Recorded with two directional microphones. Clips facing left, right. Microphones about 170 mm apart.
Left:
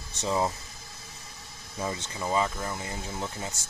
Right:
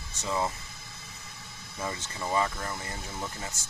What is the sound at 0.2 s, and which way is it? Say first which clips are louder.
Speech: left 3 dB; 25° left (ahead or behind).